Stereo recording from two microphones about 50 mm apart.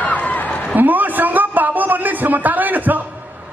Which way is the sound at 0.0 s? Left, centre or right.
Left.